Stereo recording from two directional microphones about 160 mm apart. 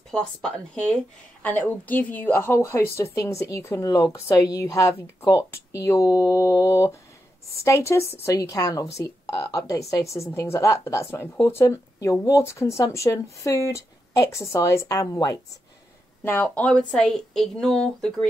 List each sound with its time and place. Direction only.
0.1 s a woman's voice: 5° left (ahead or behind); by 15.3 s 25° left (ahead or behind)
16.3 s a woman's voice: 10° left (ahead or behind)